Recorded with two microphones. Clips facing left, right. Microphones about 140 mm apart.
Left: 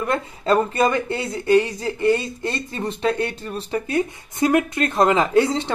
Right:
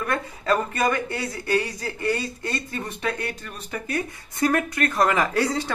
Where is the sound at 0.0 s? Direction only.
25° left (ahead or behind).